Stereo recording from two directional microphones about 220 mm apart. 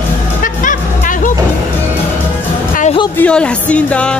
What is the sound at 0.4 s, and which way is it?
Music, 35° left (ahead or behind).